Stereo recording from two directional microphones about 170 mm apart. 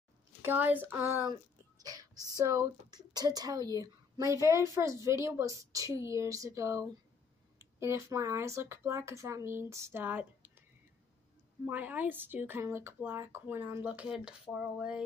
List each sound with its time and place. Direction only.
0.4 s speech: 10° right (ahead or behind)
11.6 s speech: 10° right (ahead or behind)